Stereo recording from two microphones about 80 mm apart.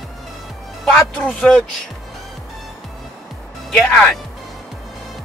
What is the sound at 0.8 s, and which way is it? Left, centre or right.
Speech, centre.